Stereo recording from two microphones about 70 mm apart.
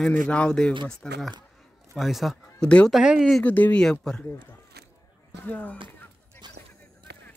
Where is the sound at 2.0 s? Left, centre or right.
Centre.